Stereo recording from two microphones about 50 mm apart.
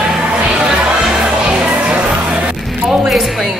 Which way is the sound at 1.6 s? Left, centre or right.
Centre.